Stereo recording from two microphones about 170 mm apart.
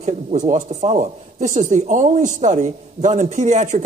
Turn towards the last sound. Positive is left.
turn(degrees=-45)  # may be behind; listen again after turning